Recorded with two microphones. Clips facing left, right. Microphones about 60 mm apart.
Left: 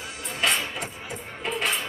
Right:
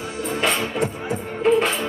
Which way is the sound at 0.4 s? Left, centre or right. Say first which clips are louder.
Right 4 dB; right.